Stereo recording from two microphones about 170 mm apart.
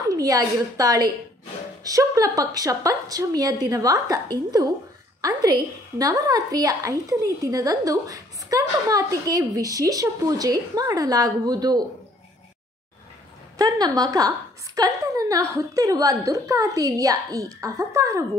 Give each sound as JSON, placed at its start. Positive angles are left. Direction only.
{"t": 0.1, "sound": "a woman's voice", "side_deg": -20}
{"t": 13.6, "sound": "a woman's voice", "side_deg": -20}